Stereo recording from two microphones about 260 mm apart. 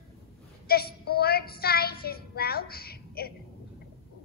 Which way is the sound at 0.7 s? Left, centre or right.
Left.